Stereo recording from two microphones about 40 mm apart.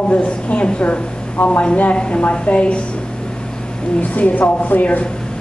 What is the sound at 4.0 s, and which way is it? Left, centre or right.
Speech, left.